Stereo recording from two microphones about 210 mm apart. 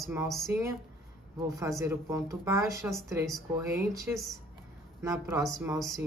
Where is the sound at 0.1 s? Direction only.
15° right (ahead or behind).